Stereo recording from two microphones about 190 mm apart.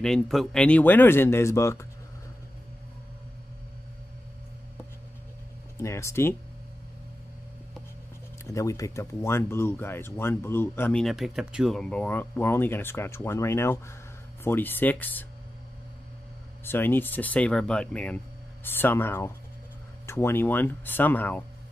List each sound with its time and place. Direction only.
0.0 s speech: centre (ahead or behind)
5.8 s speech: 15° left (ahead or behind)
8.5 s speech: 15° left (ahead or behind)
16.6 s speech: 10° left (ahead or behind)